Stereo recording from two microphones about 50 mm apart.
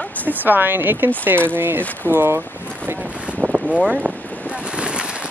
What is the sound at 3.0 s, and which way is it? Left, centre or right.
Boat, right.